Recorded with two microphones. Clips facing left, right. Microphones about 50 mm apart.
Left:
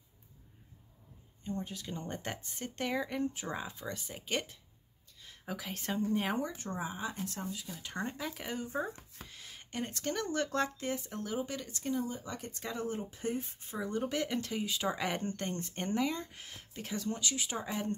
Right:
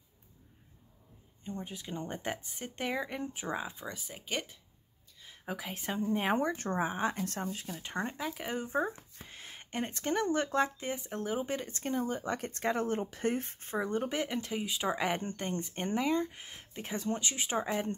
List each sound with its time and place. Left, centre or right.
1.4 s speech: centre
4.0 s speech: centre
5.2 s speech: centre
6.3 s speech: right
7.6 s speech: right
8.0 s speech: centre
8.5 s speech: right
11.4 s speech: right
13.8 s speech: right